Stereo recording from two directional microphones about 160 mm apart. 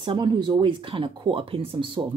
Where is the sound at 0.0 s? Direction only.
30° right (ahead or behind).